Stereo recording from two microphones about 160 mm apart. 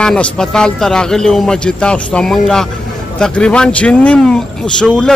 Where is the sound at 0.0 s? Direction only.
5° left (ahead or behind).